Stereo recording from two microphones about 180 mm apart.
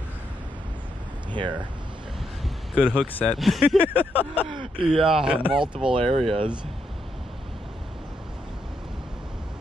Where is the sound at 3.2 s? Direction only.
Centre (ahead or behind).